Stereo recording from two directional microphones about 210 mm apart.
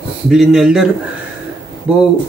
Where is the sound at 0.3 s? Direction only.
Centre (ahead or behind).